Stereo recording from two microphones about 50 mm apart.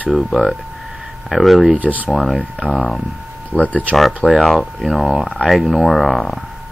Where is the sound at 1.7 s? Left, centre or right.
Right.